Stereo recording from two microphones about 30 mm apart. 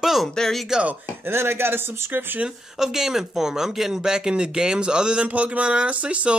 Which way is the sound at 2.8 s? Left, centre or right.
Centre.